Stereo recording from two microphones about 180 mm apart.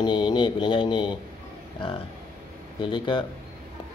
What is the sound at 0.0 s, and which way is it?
Mantra, 25° left (ahead or behind).